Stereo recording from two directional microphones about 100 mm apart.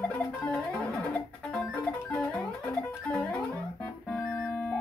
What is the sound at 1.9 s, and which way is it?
Music, 15° left (ahead or behind).